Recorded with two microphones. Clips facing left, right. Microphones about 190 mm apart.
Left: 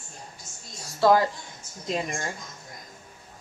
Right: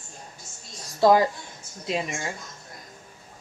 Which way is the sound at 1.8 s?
5° right (ahead or behind).